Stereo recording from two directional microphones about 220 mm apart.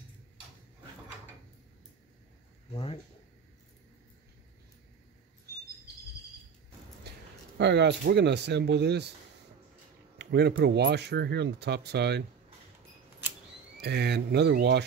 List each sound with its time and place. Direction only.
2.7 s speech: 25° left (ahead or behind)
7.1 s speech: 50° right (ahead or behind)
10.1 s speech: 50° right (ahead or behind)
13.7 s speech: 50° right (ahead or behind)